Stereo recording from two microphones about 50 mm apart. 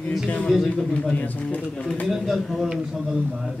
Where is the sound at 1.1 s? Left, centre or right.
Left.